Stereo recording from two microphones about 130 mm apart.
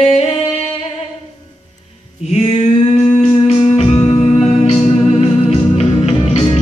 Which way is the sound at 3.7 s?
50° left (ahead or behind).